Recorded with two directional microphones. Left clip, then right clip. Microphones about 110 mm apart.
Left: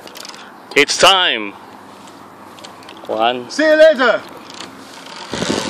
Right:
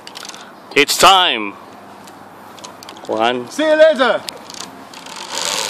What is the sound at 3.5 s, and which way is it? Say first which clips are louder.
Speech: left 2 dB; centre (ahead or behind).